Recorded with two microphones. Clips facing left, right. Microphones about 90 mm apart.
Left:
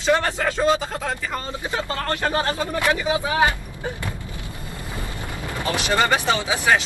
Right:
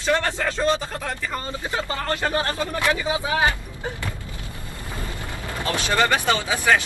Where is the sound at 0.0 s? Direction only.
10° left (ahead or behind).